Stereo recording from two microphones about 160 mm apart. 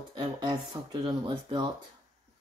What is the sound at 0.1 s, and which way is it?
Speech, 30° right (ahead or behind).